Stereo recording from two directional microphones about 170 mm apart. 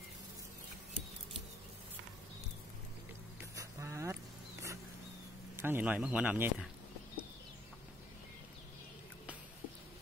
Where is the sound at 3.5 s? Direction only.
15° right (ahead or behind).